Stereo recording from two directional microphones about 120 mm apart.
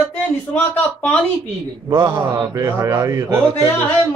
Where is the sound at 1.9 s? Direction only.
40° right (ahead or behind).